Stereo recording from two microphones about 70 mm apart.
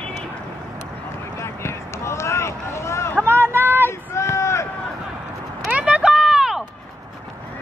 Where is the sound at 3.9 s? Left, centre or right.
Left.